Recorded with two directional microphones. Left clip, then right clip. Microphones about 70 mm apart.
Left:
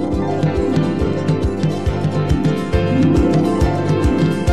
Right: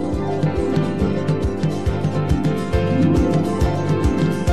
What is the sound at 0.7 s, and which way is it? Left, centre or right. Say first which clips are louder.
Music: left 3 dB; right.